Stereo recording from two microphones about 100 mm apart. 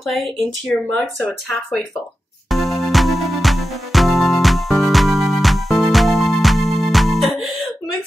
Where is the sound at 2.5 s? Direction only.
Centre (ahead or behind).